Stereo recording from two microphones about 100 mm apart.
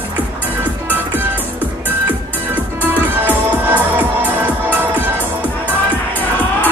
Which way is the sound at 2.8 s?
20° right (ahead or behind).